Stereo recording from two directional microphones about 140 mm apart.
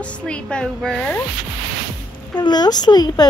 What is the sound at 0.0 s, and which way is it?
A woman's voice, 10° left (ahead or behind).